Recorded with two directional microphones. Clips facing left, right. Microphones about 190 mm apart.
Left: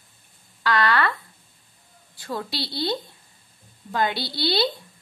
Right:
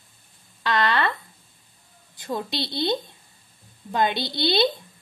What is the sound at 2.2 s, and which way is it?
A woman's voice, 20° right (ahead or behind).